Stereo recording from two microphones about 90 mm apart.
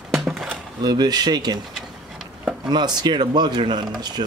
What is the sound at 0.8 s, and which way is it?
Speech, 50° right (ahead or behind).